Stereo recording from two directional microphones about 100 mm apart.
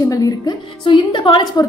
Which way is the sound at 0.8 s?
55° left (ahead or behind).